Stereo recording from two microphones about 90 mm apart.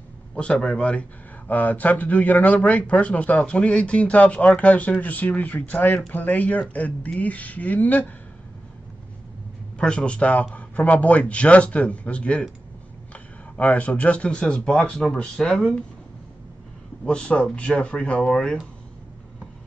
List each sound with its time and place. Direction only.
0.4 s speech: 10° left (ahead or behind)
9.8 s speech: 10° left (ahead or behind)
17.0 s speech: 10° left (ahead or behind)